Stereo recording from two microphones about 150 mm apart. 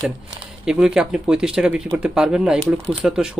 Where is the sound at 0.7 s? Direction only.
5° right (ahead or behind).